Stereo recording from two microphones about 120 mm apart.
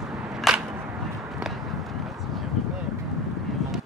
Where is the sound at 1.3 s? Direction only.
Centre (ahead or behind).